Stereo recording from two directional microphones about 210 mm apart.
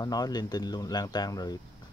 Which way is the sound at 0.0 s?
20° left (ahead or behind).